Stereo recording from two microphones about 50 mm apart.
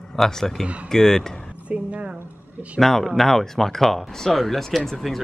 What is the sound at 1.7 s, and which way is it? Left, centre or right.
Speech, right.